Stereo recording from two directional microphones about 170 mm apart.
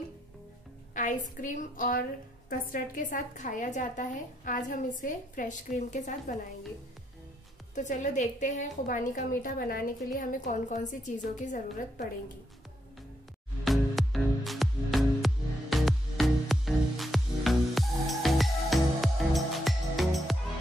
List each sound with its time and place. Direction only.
0.9 s a woman's voice: 50° left (ahead or behind)
7.7 s a woman's voice: 45° left (ahead or behind)
13.7 s music: centre (ahead or behind)